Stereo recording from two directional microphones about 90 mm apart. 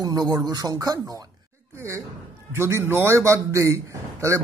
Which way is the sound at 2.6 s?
30° right (ahead or behind).